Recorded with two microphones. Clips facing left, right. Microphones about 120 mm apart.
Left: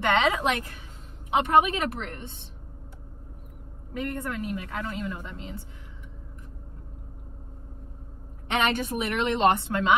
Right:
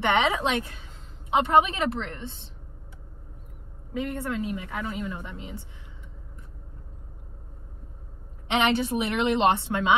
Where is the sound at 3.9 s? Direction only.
20° right (ahead or behind).